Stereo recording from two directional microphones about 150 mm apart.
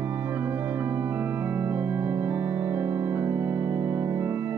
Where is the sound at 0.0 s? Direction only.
10° right (ahead or behind).